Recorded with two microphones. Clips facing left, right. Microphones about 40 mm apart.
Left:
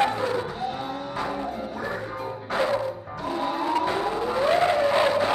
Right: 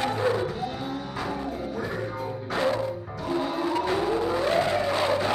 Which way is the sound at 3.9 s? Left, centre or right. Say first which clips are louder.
Right 1 dB; centre.